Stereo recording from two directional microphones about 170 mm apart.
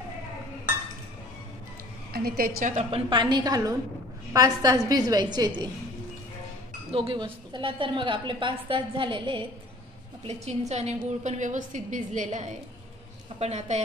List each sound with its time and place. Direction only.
2.1 s a woman's voice: 60° right (ahead or behind)
2.7 s a woman's voice: 35° right (ahead or behind)
6.9 s a woman's voice: 30° right (ahead or behind)
10.2 s a woman's voice: 40° right (ahead or behind)